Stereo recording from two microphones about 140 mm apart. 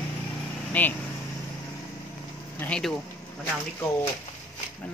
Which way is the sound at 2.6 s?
5° left (ahead or behind).